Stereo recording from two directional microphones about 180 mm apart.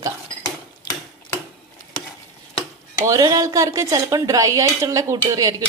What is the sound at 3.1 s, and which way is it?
A woman's voice, 20° right (ahead or behind).